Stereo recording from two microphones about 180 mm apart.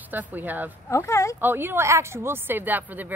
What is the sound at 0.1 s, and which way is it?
Speech, 10° right (ahead or behind).